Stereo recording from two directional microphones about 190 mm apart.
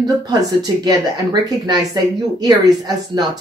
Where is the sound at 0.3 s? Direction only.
20° right (ahead or behind).